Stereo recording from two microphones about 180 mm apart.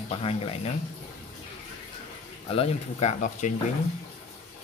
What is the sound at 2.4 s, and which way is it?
Speech, 35° left (ahead or behind).